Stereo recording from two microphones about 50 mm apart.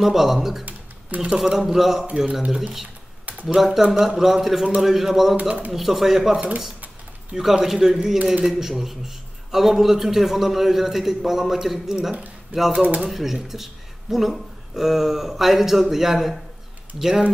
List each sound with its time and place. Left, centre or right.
0.0 s a man's voice: centre
5.4 s speech: right
5.7 s a man's voice: centre